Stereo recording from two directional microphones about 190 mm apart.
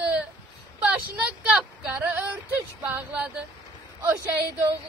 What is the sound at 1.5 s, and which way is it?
Speech, 10° right (ahead or behind).